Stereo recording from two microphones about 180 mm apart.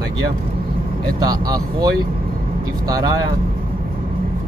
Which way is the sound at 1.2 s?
20° right (ahead or behind).